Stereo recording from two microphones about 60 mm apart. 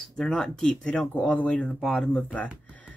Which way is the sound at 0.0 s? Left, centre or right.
Centre.